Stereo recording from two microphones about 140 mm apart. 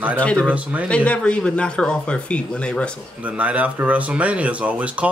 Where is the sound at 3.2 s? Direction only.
10° right (ahead or behind).